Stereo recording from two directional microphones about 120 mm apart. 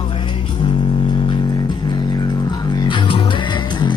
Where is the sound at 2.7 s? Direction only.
40° left (ahead or behind).